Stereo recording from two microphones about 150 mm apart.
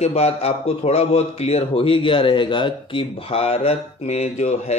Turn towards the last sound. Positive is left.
turn(degrees=50)  # may be behind; listen again after turning